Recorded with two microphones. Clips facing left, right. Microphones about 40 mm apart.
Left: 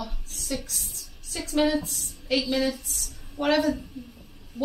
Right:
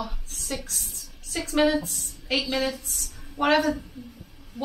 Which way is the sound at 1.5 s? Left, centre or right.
Centre.